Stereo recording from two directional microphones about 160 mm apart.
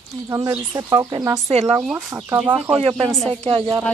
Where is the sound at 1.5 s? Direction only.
40° right (ahead or behind).